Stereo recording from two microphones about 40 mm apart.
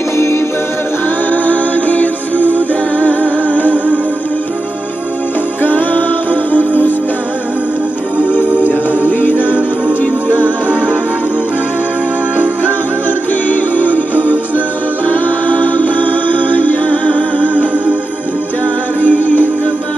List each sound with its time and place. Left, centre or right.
1.3 s music: left
3.7 s music: right
5.6 s music: left
9.0 s a capella: left
10.2 s music: left
13.5 s music: left
15.1 s music: left
18.9 s music: left